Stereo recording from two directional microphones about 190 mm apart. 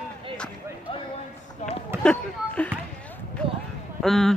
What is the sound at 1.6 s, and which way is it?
Run, 35° left (ahead or behind).